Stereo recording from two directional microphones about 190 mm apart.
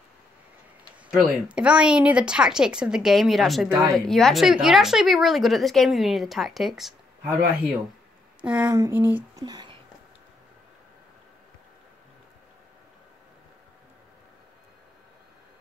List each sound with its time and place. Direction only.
1.1 s speech: 5° right (ahead or behind)
8.4 s speech: 5° right (ahead or behind)